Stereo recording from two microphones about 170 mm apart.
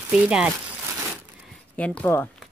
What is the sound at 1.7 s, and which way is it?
Speech, 10° left (ahead or behind).